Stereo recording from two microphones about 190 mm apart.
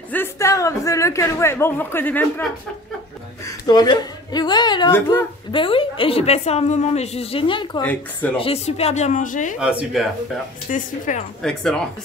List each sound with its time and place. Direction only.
0.1 s a man's voice: 15° left (ahead or behind)
3.6 s a woman's voice: 20° left (ahead or behind)
7.8 s speech: 10° left (ahead or behind)
8.4 s speech: 30° left (ahead or behind)
9.6 s speech: 5° right (ahead or behind)
10.7 s speech: 40° left (ahead or behind)
11.4 s speech: 5° left (ahead or behind)